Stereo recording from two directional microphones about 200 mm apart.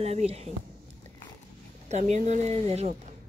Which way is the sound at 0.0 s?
30° right (ahead or behind).